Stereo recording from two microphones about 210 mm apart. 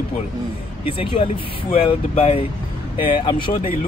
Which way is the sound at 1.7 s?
30° left (ahead or behind).